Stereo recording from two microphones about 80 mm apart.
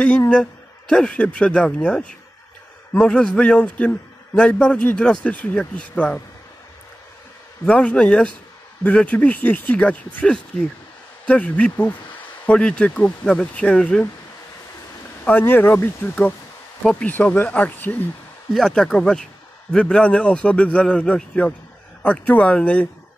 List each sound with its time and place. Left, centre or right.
0.3 s a man's voice: centre
7.6 s a man's voice: centre
15.2 s speech: left
16.8 s speech: centre
18.5 s a man's voice: centre